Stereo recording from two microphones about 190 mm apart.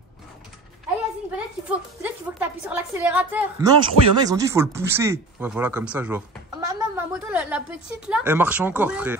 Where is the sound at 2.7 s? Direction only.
10° right (ahead or behind).